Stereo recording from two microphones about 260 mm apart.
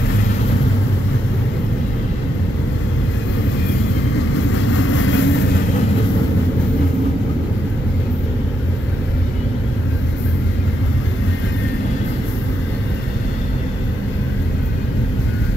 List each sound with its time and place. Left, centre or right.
4.6 s vehicle: left